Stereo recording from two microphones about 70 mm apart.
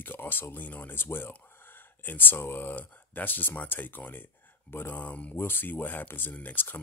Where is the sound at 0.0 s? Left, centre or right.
Left.